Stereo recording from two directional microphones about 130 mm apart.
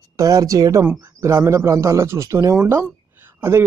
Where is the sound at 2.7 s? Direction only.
15° right (ahead or behind).